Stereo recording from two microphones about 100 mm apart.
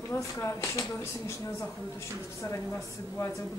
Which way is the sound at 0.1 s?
25° left (ahead or behind).